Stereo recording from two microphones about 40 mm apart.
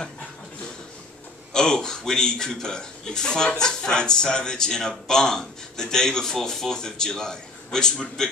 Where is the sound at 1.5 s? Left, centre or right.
Centre.